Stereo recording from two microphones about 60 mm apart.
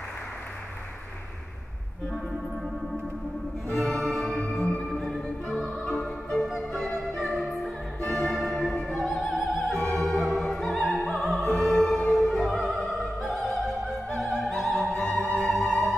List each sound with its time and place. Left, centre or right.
3.8 s music: centre
4.4 s music: centre
4.8 s music: centre
5.9 s music: centre
6.4 s music: centre
8.0 s music: centre
8.3 s music: centre
9.7 s opera: centre
10.3 s music: centre
12.1 s opera: centre
14.4 s music: centre